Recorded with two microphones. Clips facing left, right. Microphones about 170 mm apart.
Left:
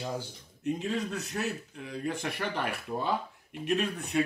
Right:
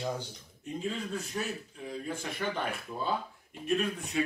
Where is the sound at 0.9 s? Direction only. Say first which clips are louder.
Left 2 dB; 75° left (ahead or behind).